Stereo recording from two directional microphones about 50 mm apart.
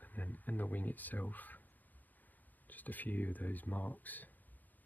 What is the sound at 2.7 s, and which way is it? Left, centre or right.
Speech, left.